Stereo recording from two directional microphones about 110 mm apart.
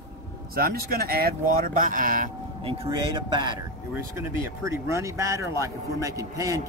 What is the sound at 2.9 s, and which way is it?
Speech, 45° right (ahead or behind).